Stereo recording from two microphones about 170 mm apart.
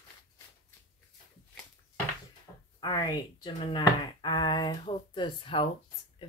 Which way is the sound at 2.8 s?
25° left (ahead or behind).